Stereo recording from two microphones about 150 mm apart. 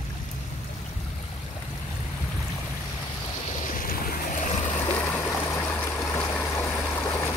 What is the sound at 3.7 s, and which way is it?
Boat, 65° left (ahead or behind).